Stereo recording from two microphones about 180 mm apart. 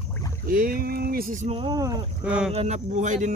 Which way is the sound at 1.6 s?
20° right (ahead or behind).